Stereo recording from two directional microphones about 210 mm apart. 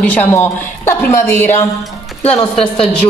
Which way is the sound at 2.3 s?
25° left (ahead or behind).